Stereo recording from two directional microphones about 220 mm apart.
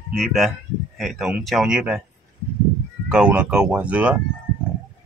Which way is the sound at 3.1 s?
5° right (ahead or behind).